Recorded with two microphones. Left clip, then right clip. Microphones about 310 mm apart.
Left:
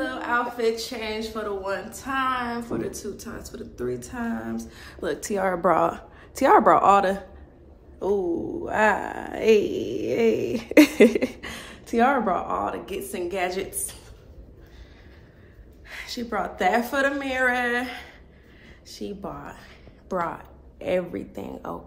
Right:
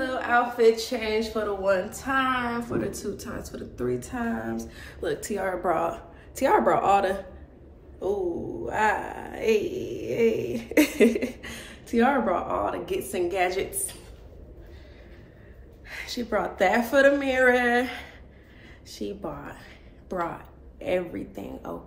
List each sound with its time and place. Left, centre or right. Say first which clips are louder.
0.0 s speech: right 2 dB; centre
8.6 s speech: left 3 dB; left; by 13.9 s centre
15.9 s a woman's voice: right 2 dB; centre; by 21.7 s left